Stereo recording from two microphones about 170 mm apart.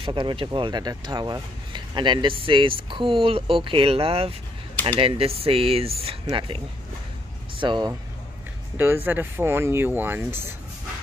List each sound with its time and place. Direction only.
0.0 s speech: 25° right (ahead or behind)
8.7 s speech: 10° right (ahead or behind)